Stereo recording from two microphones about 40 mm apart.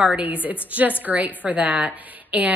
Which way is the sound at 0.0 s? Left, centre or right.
Right.